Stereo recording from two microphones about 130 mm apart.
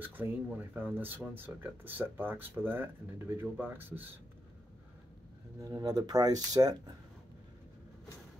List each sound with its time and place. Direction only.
0.0 s speech: 15° right (ahead or behind)
5.6 s speech: 25° right (ahead or behind)